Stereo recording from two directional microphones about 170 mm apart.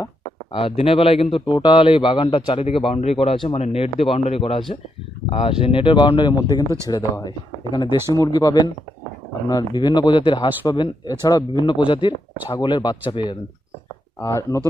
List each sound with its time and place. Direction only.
0.0 s a man's voice: 30° left (ahead or behind)